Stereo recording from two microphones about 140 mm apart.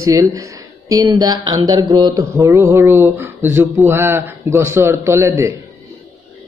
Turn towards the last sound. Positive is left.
turn(degrees=-20)  # may be behind; listen again after turning